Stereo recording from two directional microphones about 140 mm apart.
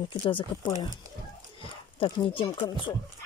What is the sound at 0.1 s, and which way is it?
Speech, 35° left (ahead or behind).